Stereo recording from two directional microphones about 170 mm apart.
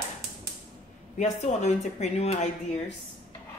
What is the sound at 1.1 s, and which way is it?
Speech, 45° left (ahead or behind).